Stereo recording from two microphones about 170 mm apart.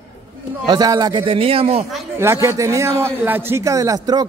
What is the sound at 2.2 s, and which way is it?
A man's voice, 15° right (ahead or behind).